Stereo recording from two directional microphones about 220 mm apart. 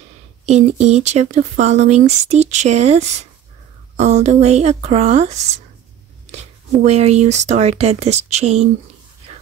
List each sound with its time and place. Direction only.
0.5 s speech: 30° right (ahead or behind)
6.8 s speech: 30° right (ahead or behind)